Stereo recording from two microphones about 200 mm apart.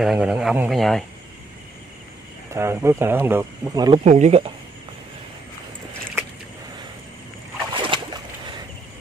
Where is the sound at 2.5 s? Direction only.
15° right (ahead or behind).